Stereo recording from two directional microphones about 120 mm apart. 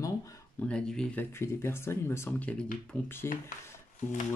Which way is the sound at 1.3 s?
20° left (ahead or behind).